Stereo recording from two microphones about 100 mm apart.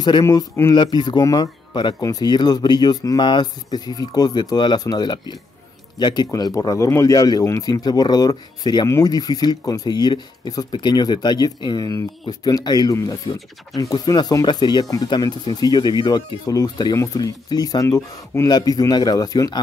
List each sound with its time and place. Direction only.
0.2 s speech: 40° left (ahead or behind)
8.8 s speech: 30° left (ahead or behind)
9.1 s speech: 40° left (ahead or behind)
18.5 s speech: 40° left (ahead or behind)